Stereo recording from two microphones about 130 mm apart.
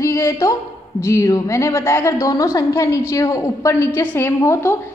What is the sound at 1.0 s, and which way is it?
A woman's voice, 25° left (ahead or behind).